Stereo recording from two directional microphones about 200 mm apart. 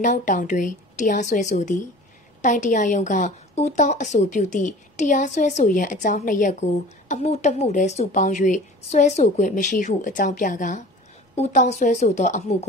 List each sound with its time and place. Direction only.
0.0 s a woman's voice: 40° left (ahead or behind)